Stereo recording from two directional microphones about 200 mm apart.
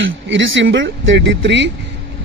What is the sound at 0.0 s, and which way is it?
Speech, 70° right (ahead or behind).